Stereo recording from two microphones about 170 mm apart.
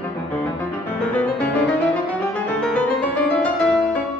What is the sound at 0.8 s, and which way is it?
Music, 10° left (ahead or behind).